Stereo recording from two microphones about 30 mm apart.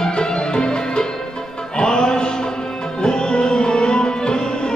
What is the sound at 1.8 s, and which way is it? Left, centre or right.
Music, left.